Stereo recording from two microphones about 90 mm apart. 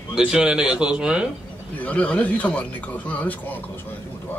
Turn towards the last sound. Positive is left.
turn(degrees=15)  # may be behind; listen again after turning